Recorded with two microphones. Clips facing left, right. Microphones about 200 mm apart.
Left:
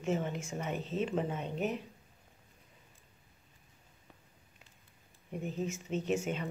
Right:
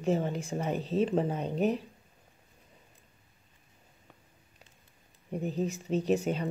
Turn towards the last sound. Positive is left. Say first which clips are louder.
# right 5 dB
turn(degrees=-35)  # may be behind; listen again after turning